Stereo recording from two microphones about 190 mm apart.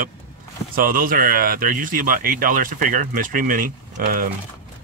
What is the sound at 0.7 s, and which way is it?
Speech, 50° right (ahead or behind).